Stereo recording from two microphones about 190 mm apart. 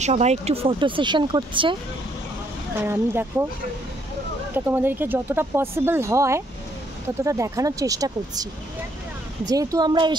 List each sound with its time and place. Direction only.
0.0 s speech: 35° right (ahead or behind)
2.8 s speech: 15° right (ahead or behind)
4.6 s speech: 10° right (ahead or behind)
9.5 s speech: 20° right (ahead or behind)